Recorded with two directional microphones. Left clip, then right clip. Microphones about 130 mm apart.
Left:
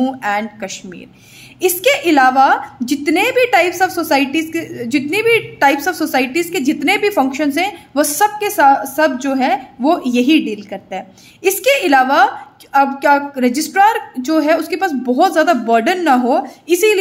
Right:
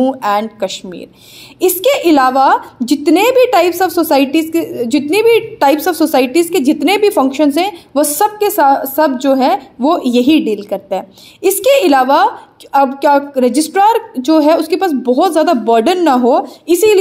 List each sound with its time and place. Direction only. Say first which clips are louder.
0.2 s a woman's voice: right 5 dB; 30° right (ahead or behind)